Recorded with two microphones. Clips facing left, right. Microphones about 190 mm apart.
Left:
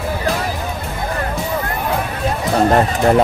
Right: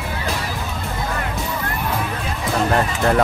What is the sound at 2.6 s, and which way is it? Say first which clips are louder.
Speech: left 5 dB; 35° left (ahead or behind).